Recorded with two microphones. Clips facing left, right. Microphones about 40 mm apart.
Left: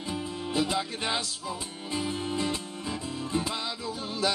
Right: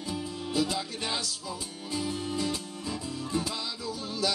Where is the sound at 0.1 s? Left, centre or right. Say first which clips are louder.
Left 1 dB; left.